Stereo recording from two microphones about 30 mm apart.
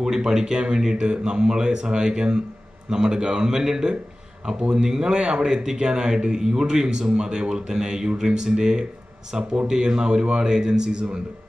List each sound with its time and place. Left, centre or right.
0.0 s speech: centre
0.9 s speech: right